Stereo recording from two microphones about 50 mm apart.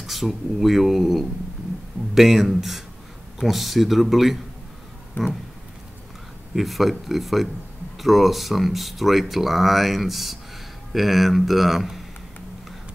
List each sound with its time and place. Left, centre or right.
0.0 s speech: centre
5.2 s speech: left
6.5 s speech: centre